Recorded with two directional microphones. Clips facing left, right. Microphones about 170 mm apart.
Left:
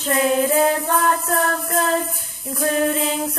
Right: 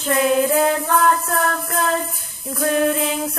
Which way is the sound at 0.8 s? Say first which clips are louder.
Right 2 dB; 35° left (ahead or behind).